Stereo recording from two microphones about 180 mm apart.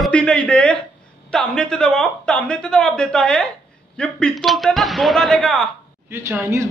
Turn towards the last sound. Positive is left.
turn(degrees=-15)  # may be behind; listen again after turning